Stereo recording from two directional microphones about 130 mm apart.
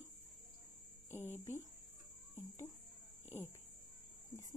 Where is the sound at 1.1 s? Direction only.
20° left (ahead or behind).